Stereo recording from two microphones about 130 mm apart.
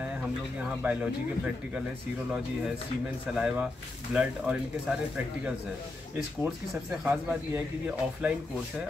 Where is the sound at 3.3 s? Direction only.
10° right (ahead or behind).